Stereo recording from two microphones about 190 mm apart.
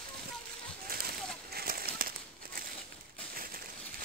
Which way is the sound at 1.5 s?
55° right (ahead or behind).